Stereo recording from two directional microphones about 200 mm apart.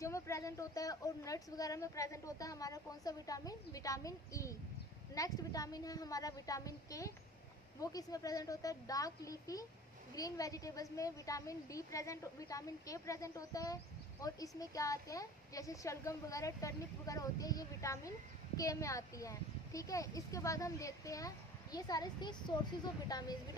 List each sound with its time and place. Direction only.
0.0 s a woman's voice: 15° left (ahead or behind)